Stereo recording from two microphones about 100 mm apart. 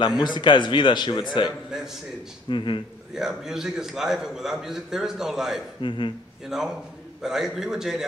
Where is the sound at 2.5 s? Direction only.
55° left (ahead or behind).